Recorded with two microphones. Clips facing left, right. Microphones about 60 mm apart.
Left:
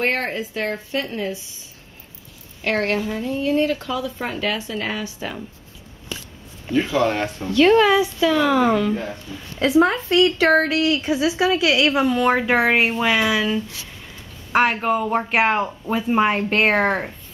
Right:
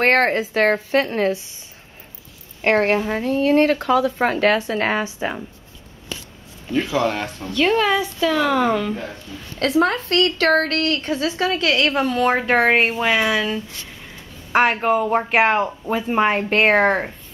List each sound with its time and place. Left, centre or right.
0.0 s a woman's voice: right
1.0 s speech: right
2.6 s a woman's voice: right
3.1 s speech: right
5.0 s a woman's voice: right
6.9 s a woman's voice: centre